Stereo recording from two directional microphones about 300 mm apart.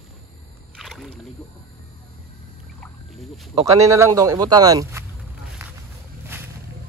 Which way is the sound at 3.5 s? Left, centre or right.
Centre.